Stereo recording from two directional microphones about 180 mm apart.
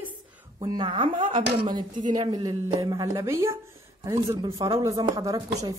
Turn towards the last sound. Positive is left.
turn(degrees=-20)  # may be behind; listen again after turning